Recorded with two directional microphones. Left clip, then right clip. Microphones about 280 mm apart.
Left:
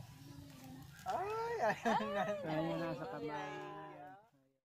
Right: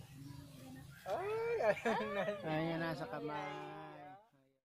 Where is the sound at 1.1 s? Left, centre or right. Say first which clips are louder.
Right 1 dB; left.